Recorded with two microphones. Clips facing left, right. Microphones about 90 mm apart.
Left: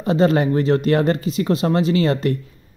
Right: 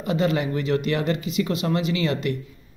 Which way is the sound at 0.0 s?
35° left (ahead or behind).